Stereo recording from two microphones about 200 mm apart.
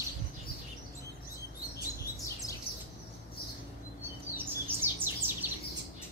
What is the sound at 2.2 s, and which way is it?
Bird, 15° left (ahead or behind).